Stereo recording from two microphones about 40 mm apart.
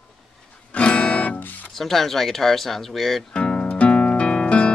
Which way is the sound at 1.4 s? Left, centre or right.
Left.